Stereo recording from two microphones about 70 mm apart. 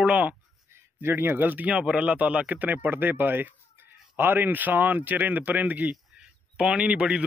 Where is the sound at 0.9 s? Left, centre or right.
Right.